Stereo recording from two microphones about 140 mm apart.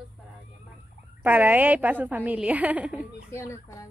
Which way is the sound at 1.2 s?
15° right (ahead or behind).